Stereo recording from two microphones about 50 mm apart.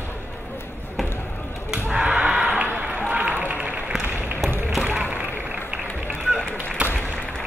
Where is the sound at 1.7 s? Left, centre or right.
Centre.